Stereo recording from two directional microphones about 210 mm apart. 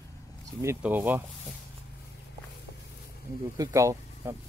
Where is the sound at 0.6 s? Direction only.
10° right (ahead or behind).